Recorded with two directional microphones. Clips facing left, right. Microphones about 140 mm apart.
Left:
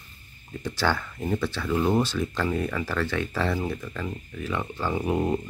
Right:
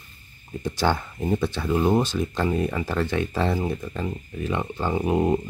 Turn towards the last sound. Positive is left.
turn(degrees=-20)  # may be behind; listen again after turning